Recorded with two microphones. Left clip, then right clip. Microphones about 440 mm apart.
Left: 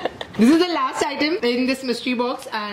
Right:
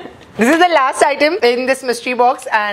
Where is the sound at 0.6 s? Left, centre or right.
Right.